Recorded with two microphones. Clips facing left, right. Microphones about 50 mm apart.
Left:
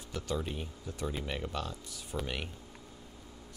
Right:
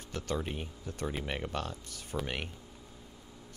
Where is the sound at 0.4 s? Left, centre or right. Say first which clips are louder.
Right 1 dB; right.